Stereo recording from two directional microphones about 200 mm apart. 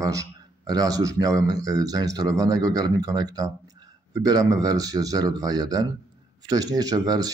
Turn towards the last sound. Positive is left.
turn(degrees=-20)  # may be behind; listen again after turning